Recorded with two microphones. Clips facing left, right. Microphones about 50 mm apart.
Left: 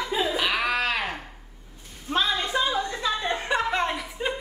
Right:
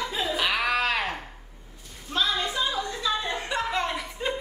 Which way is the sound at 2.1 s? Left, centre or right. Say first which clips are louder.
Left 2 dB; left.